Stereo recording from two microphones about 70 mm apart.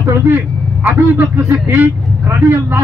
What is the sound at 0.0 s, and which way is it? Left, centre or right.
Speech, right.